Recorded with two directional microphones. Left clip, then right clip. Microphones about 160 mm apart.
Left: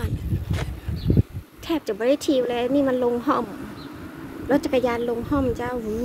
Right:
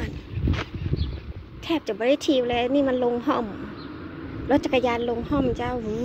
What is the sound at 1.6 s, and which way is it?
A woman's voice, 20° left (ahead or behind).